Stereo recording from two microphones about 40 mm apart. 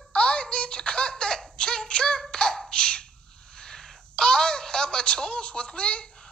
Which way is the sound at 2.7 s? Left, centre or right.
Left.